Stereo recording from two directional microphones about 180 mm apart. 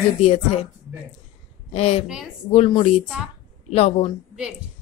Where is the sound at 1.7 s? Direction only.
35° left (ahead or behind).